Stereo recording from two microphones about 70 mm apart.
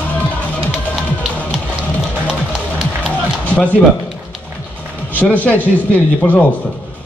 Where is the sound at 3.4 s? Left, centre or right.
Left.